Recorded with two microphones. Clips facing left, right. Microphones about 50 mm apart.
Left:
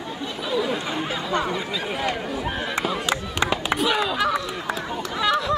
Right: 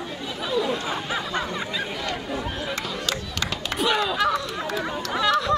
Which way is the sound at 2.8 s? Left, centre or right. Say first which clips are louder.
Left 4 dB; centre.